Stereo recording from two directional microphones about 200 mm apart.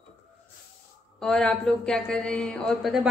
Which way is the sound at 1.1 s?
5° left (ahead or behind).